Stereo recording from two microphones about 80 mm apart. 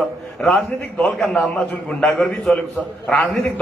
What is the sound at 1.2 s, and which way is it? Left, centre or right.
A man's voice, centre.